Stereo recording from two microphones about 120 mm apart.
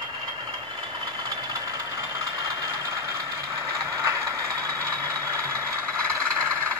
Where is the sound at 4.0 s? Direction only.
25° right (ahead or behind).